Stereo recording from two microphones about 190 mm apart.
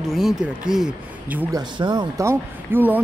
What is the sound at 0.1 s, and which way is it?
Speech, centre (ahead or behind).